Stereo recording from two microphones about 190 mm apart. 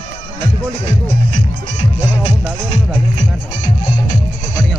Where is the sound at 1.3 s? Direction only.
35° left (ahead or behind).